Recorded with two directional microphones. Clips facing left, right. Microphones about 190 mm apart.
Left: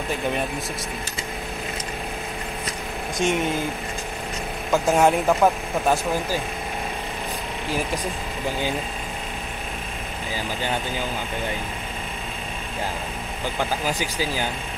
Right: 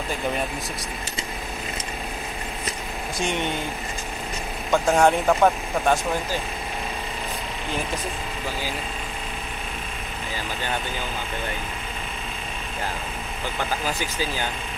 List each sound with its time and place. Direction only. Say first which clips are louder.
3.2 s a man's voice: left 4 dB; centre (ahead or behind)
4.6 s a man's voice: even; centre (ahead or behind)
8.5 s speech: left 5 dB; 20° left (ahead or behind)
13.6 s speech: left 2 dB; 15° left (ahead or behind)